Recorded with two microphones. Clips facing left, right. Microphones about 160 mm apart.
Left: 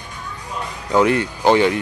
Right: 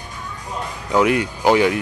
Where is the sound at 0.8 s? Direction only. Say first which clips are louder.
Left 1 dB; 5° right (ahead or behind).